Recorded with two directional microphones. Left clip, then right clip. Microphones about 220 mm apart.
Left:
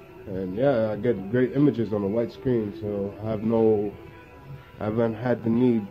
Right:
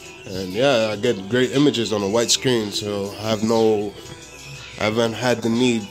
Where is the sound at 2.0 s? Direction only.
35° right (ahead or behind).